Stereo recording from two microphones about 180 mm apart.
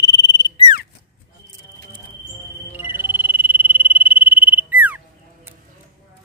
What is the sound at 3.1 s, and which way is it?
Frog, 10° right (ahead or behind).